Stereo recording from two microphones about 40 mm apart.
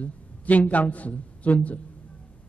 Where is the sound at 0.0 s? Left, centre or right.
Left.